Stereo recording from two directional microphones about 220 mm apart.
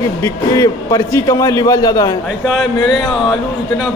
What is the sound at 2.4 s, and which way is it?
Speech, centre (ahead or behind).